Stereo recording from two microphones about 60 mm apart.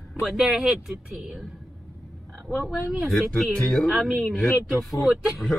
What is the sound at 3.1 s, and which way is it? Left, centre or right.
Speech, centre.